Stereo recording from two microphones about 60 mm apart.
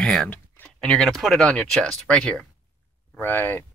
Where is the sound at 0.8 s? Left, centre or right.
Centre.